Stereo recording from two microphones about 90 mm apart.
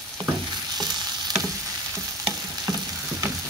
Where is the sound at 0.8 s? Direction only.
50° right (ahead or behind).